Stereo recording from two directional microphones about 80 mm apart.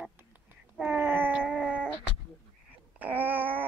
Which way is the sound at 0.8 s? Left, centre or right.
Right.